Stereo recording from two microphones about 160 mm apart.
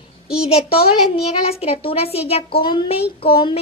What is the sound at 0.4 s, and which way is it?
A woman's voice, 40° left (ahead or behind).